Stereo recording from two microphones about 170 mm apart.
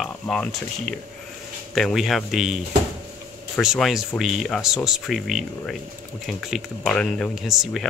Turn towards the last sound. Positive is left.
turn(degrees=0)  # may be behind; listen again after turning